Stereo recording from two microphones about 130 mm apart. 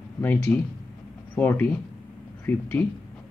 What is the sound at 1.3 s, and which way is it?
Speech, 15° left (ahead or behind).